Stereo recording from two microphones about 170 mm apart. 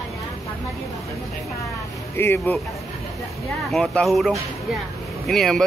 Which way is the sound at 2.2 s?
15° left (ahead or behind).